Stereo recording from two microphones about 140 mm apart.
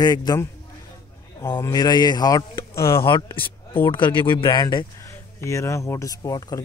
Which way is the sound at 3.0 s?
40° left (ahead or behind).